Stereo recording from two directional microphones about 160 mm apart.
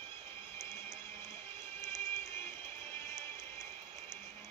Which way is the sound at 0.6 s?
15° left (ahead or behind).